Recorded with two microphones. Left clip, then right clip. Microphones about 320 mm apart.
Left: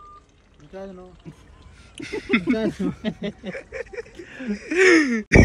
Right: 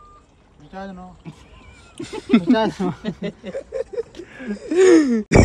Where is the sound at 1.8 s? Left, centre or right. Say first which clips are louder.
Even; centre.